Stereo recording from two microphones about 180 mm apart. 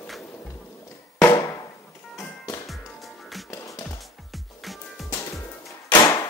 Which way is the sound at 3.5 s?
20° left (ahead or behind).